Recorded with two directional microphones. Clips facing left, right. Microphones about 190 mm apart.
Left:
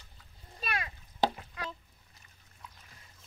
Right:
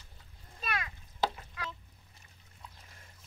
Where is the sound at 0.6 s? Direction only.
30° left (ahead or behind).